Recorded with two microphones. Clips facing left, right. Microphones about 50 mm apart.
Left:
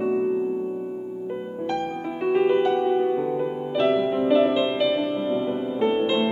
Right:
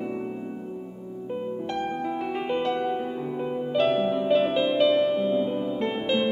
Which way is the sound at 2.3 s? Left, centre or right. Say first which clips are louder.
Left 9 dB; centre.